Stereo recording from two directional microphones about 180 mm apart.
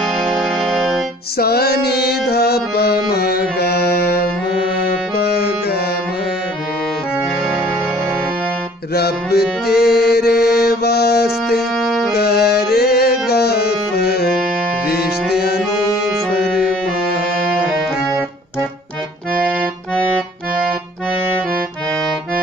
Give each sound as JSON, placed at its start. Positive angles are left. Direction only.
{"t": 0.0, "sound": "music", "side_deg": 0}
{"t": 1.4, "sound": "music", "side_deg": 60}
{"t": 8.9, "sound": "music", "side_deg": 60}
{"t": 11.8, "sound": "music", "side_deg": 0}
{"t": 12.1, "sound": "music", "side_deg": 60}
{"t": 15.3, "sound": "music", "side_deg": 60}